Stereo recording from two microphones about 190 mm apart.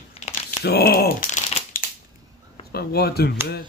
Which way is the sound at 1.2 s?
35° left (ahead or behind).